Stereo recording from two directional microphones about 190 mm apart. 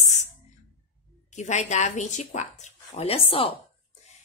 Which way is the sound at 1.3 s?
40° left (ahead or behind).